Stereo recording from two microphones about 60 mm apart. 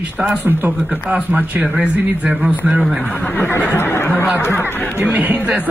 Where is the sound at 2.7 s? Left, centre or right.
Centre.